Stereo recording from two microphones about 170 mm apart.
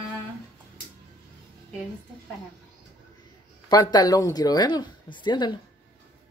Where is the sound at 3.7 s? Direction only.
25° left (ahead or behind).